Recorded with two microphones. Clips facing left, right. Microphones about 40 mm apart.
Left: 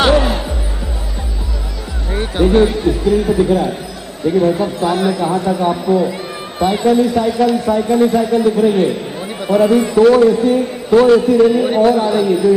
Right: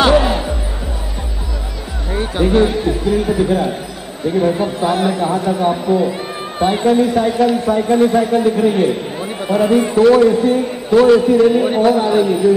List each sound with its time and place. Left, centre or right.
0.1 s music: centre
2.4 s a man's voice: centre; by 7.3 s right
7.3 s speech: centre
8.1 s a man's voice: right
8.5 s speech: centre
9.9 s a man's voice: centre